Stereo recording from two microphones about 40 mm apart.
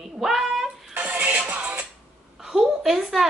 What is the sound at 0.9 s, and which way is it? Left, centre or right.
Music, right.